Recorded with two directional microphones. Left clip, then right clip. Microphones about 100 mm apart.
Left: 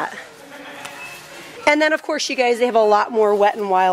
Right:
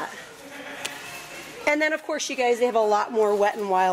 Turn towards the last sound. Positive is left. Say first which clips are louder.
# left 6 dB
turn(degrees=10)  # may be behind; listen again after turning